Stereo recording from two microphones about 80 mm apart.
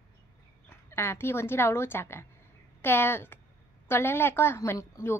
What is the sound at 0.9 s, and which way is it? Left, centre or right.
A woman's voice, left.